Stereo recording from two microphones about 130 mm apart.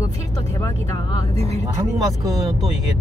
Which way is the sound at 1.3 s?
55° right (ahead or behind).